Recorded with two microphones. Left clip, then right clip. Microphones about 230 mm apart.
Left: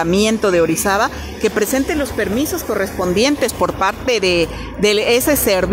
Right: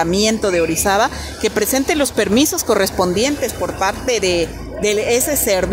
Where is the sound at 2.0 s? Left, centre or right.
Centre.